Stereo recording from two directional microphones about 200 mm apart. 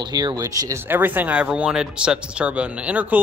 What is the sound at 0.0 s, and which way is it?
Speech, 20° right (ahead or behind).